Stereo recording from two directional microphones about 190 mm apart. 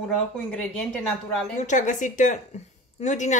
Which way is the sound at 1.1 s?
5° left (ahead or behind).